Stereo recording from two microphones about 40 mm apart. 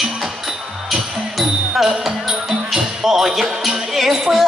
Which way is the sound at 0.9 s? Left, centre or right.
Centre.